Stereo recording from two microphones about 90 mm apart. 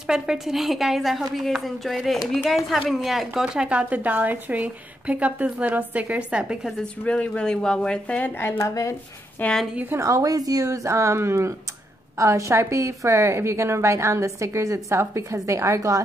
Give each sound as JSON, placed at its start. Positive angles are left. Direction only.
{"t": 0.0, "sound": "a woman's voice", "side_deg": -5}
{"t": 6.8, "sound": "speech", "side_deg": 10}
{"t": 8.4, "sound": "speech", "side_deg": 30}
{"t": 9.4, "sound": "speech", "side_deg": 10}
{"t": 9.9, "sound": "a woman's voice", "side_deg": -40}